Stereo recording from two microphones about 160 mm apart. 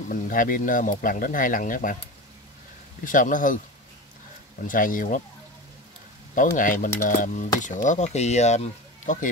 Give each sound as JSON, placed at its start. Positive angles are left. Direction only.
{"t": 0.1, "sound": "speech", "side_deg": 60}
{"t": 3.0, "sound": "speech", "side_deg": 55}
{"t": 4.6, "sound": "speech", "side_deg": 60}
{"t": 6.3, "sound": "speech", "side_deg": 55}